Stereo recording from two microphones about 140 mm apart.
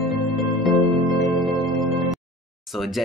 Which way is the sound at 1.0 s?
25° left (ahead or behind).